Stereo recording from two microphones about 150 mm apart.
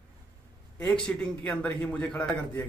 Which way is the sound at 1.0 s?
5° left (ahead or behind).